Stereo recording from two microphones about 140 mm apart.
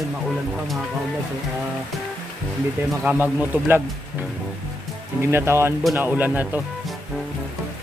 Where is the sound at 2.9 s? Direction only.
Centre (ahead or behind).